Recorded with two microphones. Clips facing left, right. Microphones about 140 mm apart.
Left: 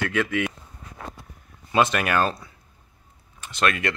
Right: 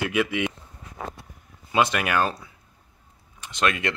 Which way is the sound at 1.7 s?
15° right (ahead or behind).